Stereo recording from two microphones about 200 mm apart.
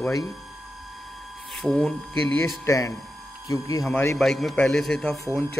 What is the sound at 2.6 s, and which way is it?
A man's voice, 15° left (ahead or behind).